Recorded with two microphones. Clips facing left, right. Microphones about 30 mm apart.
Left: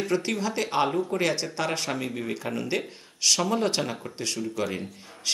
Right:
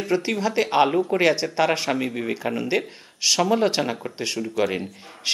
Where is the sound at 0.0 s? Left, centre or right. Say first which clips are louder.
Right 4 dB; centre.